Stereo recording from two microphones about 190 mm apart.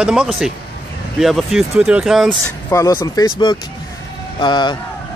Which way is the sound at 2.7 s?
15° left (ahead or behind).